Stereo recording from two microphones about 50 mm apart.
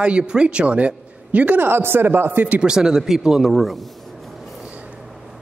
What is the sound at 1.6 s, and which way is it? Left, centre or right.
Speech, right.